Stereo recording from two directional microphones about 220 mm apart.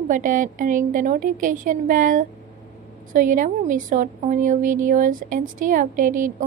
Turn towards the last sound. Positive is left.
turn(degrees=-35)  # may be behind; listen again after turning